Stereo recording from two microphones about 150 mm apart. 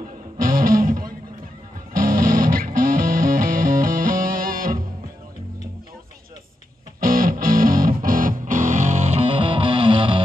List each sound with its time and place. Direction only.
0.4 s music: 70° right (ahead or behind)
7.0 s music: 75° right (ahead or behind); by 10.2 s 35° right (ahead or behind)